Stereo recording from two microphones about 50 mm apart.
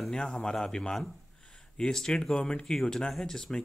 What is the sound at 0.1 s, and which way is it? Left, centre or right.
Speech, centre.